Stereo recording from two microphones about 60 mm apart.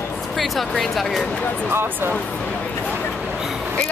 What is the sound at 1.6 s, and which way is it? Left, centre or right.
Speech, right.